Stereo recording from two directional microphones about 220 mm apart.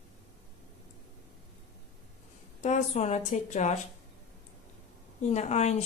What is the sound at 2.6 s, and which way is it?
Speech, 30° left (ahead or behind).